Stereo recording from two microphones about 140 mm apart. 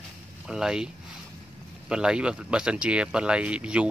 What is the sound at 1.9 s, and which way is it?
Speech, 5° right (ahead or behind).